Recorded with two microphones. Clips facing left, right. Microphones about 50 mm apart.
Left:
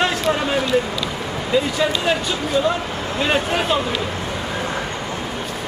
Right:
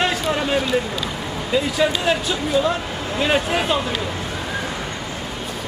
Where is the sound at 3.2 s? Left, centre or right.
Centre.